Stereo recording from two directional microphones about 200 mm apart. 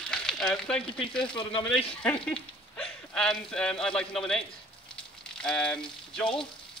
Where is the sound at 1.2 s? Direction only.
25° left (ahead or behind).